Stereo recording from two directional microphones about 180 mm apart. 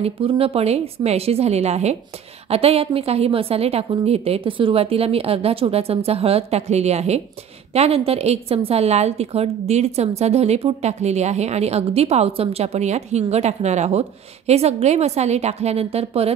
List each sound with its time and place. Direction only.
0.0 s a woman's voice: 30° right (ahead or behind)